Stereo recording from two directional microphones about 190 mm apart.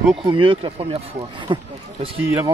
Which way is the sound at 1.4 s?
25° right (ahead or behind).